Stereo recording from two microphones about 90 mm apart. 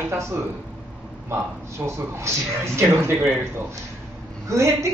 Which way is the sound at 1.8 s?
30° right (ahead or behind).